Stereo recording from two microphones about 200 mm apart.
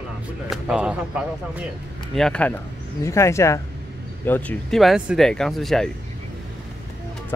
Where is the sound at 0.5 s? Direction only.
5° right (ahead or behind).